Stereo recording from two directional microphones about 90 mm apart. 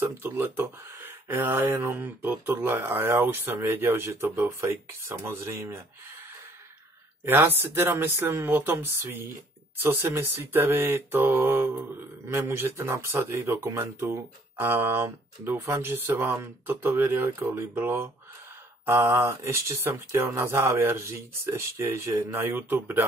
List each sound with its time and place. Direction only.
0.0 s speech: 25° right (ahead or behind)
7.2 s speech: 25° right (ahead or behind)